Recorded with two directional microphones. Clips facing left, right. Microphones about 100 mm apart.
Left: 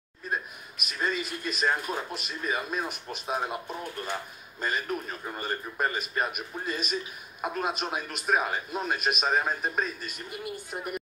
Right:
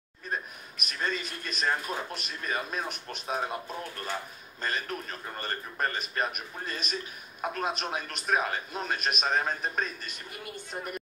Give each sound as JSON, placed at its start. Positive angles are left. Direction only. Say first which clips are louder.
{"t": 0.8, "sound": "a man's voice", "louder": "left 2 dB", "side_deg": 5}
{"t": 4.6, "sound": "a man's voice", "louder": "left 3 dB", "side_deg": 5}